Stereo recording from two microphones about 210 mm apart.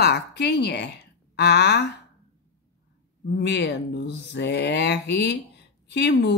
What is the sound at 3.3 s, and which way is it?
Speech, 55° left (ahead or behind).